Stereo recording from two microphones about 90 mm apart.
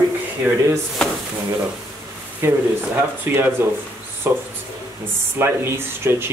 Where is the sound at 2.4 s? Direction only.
30° right (ahead or behind).